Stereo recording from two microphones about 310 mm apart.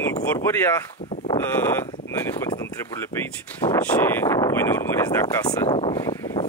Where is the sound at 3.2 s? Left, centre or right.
Centre.